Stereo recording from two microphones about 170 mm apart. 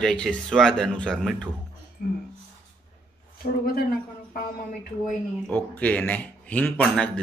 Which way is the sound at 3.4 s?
45° left (ahead or behind).